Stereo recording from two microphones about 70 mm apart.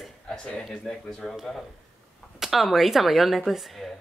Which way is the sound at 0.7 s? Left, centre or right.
Centre.